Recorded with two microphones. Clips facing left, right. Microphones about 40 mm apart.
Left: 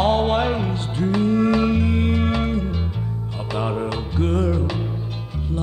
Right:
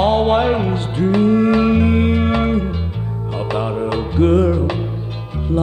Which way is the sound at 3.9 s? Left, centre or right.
Right.